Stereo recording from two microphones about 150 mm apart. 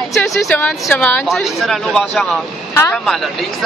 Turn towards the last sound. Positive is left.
turn(degrees=0)  # may be behind; listen again after turning